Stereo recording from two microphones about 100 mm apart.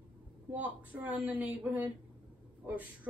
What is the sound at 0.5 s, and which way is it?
Speech, 15° right (ahead or behind).